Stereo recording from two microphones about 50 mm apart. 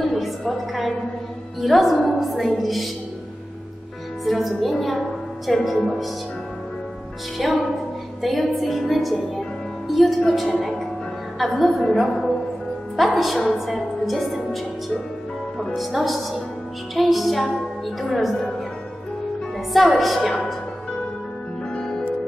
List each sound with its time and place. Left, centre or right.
0.0 s a sound: centre
1.6 s a woman's voice: centre
4.2 s a woman's voice: centre
7.3 s a woman's voice: centre
11.3 s a woman's voice: centre
15.7 s a woman's voice: centre
16.9 s music: centre
18.1 s a woman's voice: centre
19.7 s a woman's voice: centre
21.7 s music: centre